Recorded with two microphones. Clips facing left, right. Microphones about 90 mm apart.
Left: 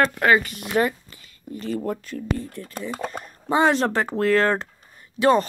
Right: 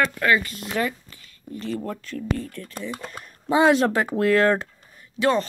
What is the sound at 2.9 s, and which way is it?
Speech, 40° left (ahead or behind).